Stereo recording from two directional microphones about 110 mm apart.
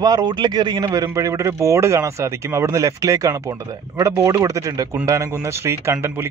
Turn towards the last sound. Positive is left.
turn(degrees=-25)  # may be behind; listen again after turning